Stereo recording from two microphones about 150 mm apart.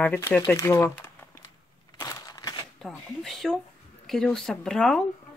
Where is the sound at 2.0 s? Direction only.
25° left (ahead or behind).